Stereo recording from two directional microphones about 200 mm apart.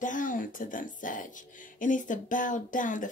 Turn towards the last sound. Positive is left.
turn(degrees=40)  # may be behind; listen again after turning